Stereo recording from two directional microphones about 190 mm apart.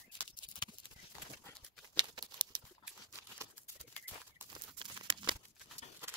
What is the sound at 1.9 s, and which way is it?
Patter, 25° right (ahead or behind).